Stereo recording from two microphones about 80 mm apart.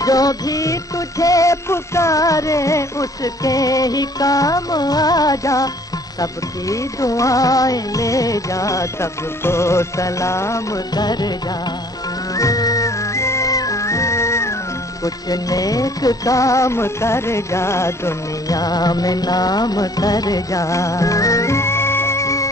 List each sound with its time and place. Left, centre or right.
0.0 s music: left
6.7 s music: left
11.0 s music: left
12.4 s music: left
15.0 s music: left
18.6 s music: left